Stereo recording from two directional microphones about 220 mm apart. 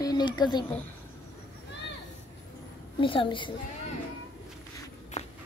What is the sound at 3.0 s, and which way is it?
Speech, 20° left (ahead or behind).